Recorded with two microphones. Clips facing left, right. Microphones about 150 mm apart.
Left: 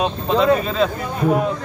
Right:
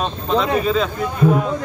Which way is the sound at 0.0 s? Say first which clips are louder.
Left 2 dB; 5° left (ahead or behind).